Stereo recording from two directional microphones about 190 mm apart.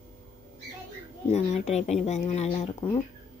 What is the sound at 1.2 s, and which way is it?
Speech, 35° left (ahead or behind).